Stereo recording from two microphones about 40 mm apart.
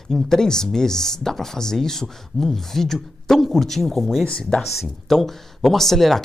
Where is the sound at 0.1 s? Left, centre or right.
Centre.